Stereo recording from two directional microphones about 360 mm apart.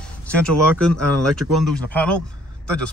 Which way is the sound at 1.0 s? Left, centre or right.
Right.